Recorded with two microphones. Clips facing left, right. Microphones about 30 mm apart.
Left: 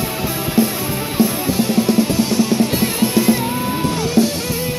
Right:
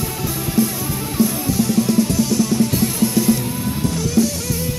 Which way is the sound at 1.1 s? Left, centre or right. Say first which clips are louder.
Left 1 dB; left.